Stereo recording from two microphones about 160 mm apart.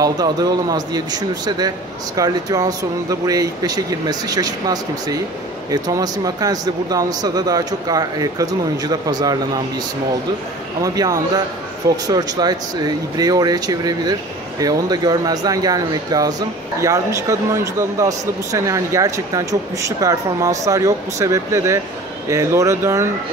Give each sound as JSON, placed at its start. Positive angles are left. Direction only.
{"t": 0.0, "sound": "speech", "side_deg": -25}
{"t": 10.8, "sound": "speech", "side_deg": -20}